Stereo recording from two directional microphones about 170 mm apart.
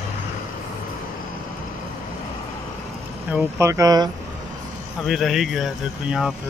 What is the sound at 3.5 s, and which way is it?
Speech, 20° right (ahead or behind).